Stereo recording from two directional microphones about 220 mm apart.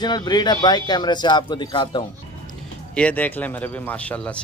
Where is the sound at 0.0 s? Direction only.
20° left (ahead or behind).